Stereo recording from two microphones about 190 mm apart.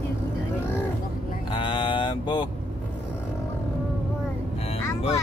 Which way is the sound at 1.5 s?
25° left (ahead or behind).